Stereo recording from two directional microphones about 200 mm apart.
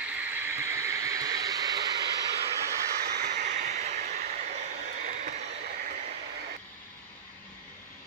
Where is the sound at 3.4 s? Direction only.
35° right (ahead or behind).